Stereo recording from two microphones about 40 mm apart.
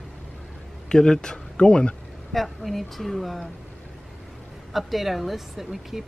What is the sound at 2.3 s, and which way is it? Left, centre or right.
Speech, centre.